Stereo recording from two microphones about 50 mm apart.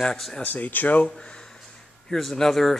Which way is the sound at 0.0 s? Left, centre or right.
Centre.